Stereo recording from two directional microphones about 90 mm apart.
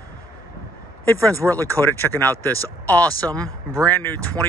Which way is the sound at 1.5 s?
20° left (ahead or behind).